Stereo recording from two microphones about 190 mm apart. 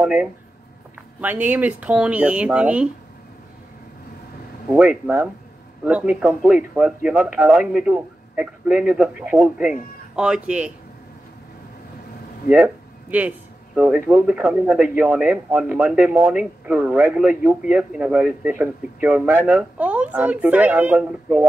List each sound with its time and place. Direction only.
0.0 s speech: 5° right (ahead or behind)
4.6 s speech: 10° right (ahead or behind)
12.4 s speech: 5° right (ahead or behind)